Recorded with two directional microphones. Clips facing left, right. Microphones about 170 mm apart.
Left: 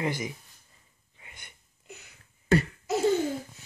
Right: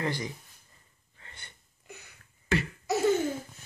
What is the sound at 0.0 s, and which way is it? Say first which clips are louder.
Speech: left 2 dB; 20° left (ahead or behind).